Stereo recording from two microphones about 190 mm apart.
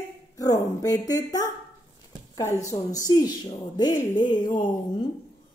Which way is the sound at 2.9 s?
20° left (ahead or behind).